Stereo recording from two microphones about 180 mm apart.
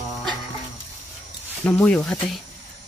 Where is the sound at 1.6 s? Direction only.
5° left (ahead or behind).